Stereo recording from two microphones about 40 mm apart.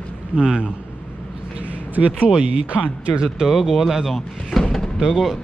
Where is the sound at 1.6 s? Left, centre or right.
Right.